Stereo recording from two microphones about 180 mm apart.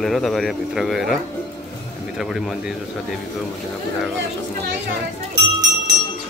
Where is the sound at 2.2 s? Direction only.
Centre (ahead or behind).